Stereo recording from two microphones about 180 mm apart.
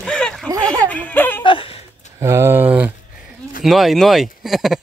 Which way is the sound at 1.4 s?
30° left (ahead or behind).